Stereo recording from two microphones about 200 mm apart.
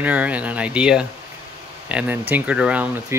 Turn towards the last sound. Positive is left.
turn(degrees=-5)  # may be behind; listen again after turning